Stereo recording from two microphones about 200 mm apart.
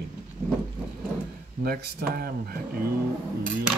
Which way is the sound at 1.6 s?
50° right (ahead or behind).